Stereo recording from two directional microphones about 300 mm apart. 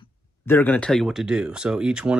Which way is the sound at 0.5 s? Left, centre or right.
Centre.